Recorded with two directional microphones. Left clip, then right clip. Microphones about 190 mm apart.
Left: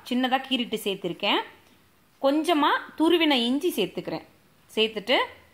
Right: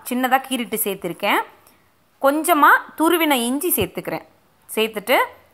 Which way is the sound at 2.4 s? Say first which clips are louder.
Right 9 dB; 10° right (ahead or behind).